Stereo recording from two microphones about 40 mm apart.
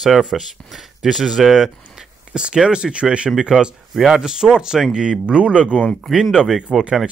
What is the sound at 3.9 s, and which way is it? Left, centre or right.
Speech, centre.